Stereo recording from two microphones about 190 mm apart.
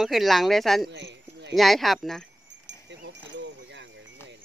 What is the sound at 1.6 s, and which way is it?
Speech, centre (ahead or behind).